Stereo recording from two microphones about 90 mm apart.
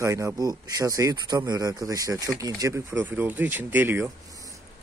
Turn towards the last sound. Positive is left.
turn(degrees=-20)  # may be behind; listen again after turning